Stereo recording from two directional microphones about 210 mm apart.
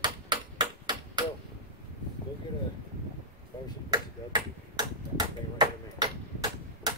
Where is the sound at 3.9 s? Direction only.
20° right (ahead or behind).